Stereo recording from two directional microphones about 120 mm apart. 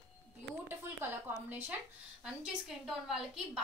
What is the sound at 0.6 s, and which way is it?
Speech, 15° right (ahead or behind).